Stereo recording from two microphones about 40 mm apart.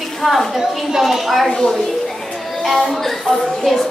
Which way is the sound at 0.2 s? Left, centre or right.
Centre.